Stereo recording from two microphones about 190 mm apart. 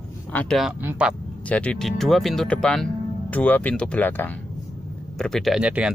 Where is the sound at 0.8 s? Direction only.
10° right (ahead or behind).